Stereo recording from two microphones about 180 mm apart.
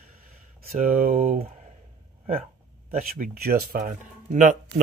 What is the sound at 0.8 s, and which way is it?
Speech, 45° right (ahead or behind).